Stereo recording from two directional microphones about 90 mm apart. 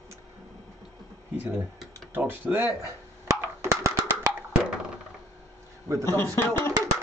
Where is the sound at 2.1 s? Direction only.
20° right (ahead or behind).